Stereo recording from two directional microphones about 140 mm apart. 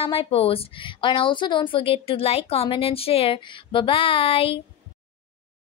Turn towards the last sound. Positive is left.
turn(degrees=40)  # may be behind; listen again after turning